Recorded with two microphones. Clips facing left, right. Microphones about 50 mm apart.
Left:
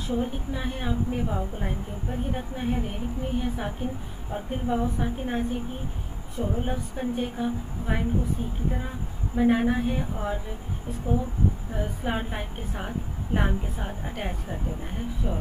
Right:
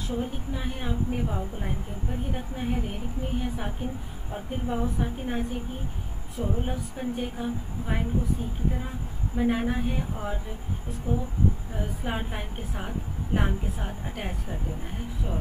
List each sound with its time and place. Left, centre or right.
0.1 s a woman's voice: centre
11.7 s a woman's voice: centre